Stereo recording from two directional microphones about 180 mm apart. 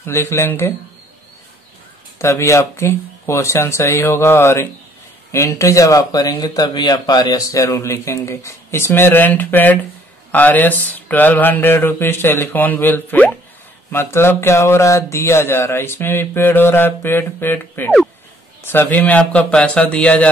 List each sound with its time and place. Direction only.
0.0 s speech: 15° left (ahead or behind)
2.1 s speech: 15° left (ahead or behind)